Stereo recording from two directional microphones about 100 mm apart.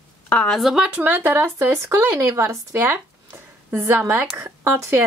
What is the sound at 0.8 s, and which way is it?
Speech, 15° right (ahead or behind).